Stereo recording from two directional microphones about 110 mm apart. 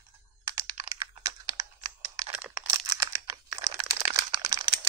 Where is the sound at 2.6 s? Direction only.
30° right (ahead or behind).